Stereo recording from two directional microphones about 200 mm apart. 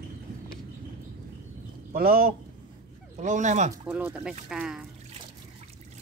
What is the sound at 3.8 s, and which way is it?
Speech, 5° right (ahead or behind).